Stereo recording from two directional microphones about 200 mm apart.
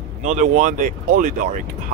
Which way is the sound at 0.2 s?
40° right (ahead or behind).